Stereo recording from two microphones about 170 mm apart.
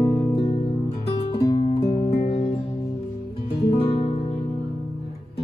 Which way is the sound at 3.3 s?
30° left (ahead or behind).